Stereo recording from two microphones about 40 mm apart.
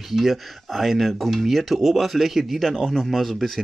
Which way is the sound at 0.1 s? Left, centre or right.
Centre.